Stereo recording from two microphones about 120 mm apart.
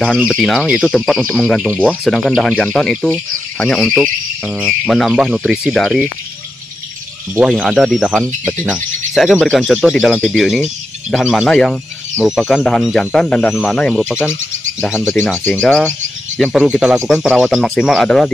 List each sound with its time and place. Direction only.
0.3 s speech: 5° left (ahead or behind)
7.3 s speech: 10° right (ahead or behind)
10.1 s speech: 10° left (ahead or behind)
10.4 s speech: 5° right (ahead or behind)
14.9 s speech: 15° left (ahead or behind)
16.3 s speech: centre (ahead or behind)